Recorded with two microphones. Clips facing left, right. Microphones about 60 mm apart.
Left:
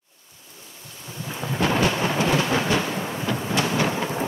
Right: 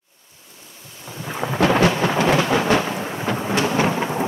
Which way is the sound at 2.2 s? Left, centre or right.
Right.